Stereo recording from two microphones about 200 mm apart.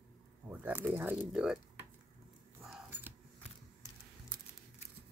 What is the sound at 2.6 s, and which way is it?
Keys jangling, centre (ahead or behind).